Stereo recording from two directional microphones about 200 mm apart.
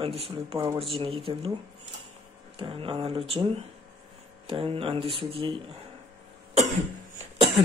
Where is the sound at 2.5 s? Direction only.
25° right (ahead or behind).